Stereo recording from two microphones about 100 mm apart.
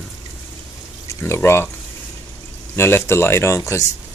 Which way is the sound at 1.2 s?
25° left (ahead or behind).